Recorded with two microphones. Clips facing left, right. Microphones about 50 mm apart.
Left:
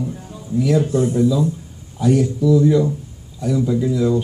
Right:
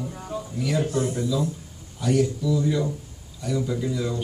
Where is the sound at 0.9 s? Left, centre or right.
Centre.